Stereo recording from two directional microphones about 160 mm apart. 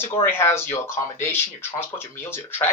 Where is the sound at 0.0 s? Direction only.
15° left (ahead or behind).